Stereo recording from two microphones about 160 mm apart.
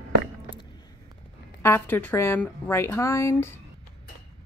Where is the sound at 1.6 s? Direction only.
15° left (ahead or behind).